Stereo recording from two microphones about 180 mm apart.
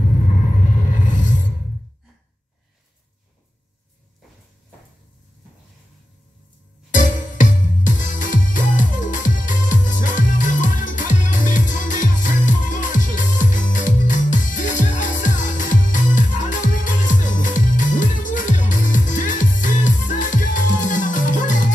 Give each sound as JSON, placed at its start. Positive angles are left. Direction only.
{"t": 0.0, "sound": "rumble", "side_deg": 45}
{"t": 6.9, "sound": "music", "side_deg": 45}